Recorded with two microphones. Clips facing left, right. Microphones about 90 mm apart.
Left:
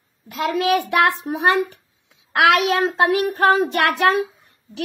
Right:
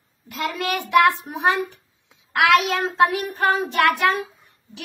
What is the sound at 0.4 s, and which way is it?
A child's voice, 65° left (ahead or behind).